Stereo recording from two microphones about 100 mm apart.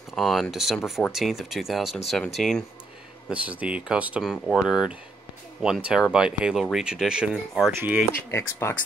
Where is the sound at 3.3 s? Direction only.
15° right (ahead or behind).